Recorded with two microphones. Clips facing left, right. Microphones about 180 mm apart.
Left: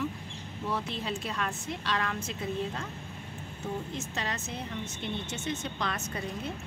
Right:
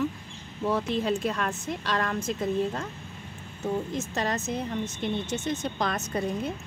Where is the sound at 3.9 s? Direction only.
45° right (ahead or behind).